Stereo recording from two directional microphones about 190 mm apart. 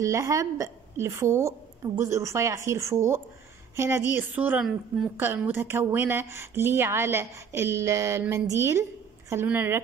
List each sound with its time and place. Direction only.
0.0 s a woman's voice: 15° right (ahead or behind)